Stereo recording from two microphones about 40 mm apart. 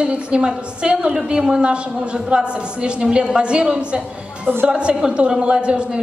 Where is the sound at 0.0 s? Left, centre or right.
Right.